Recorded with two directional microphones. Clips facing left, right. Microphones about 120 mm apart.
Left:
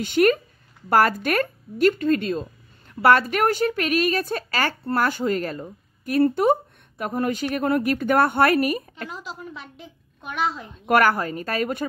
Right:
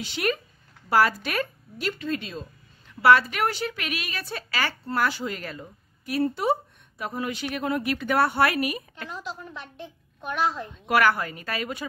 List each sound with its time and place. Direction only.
0.0 s a woman's voice: 50° left (ahead or behind)
9.1 s a child's voice: 5° left (ahead or behind)
10.9 s a woman's voice: 45° left (ahead or behind)